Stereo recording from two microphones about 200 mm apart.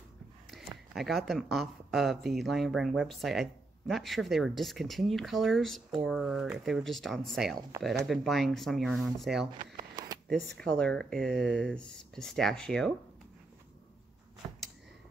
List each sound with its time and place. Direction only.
0.9 s speech: centre (ahead or behind)
9.5 s a sound: 25° right (ahead or behind)
10.6 s speech: 5° left (ahead or behind)